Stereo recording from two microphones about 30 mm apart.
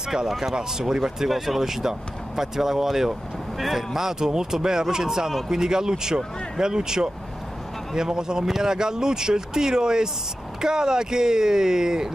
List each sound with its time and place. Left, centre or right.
0.6 s speech: right
1.3 s speech: centre